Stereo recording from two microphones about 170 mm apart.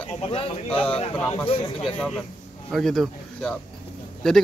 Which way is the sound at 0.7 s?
5° left (ahead or behind).